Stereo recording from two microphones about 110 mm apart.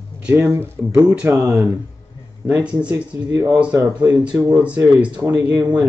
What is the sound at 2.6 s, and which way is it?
Speech, 10° right (ahead or behind).